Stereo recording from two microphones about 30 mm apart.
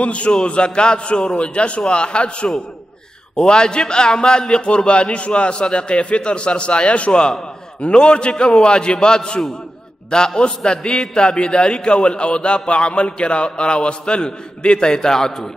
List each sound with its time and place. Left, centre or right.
0.0 s a man's voice: left
0.3 s a man's voice: left; by 15.5 s centre